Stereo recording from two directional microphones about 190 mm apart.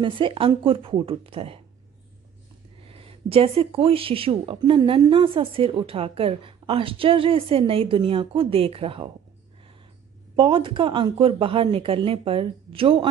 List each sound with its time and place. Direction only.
0.0 s speech: 25° right (ahead or behind)
2.9 s speech: 30° right (ahead or behind)
10.3 s speech: 25° right (ahead or behind)